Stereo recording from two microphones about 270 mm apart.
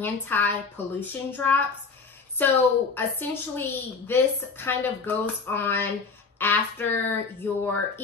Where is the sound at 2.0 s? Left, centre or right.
Centre.